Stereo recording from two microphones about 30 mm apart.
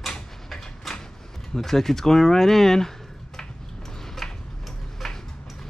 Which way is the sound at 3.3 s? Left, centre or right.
Centre.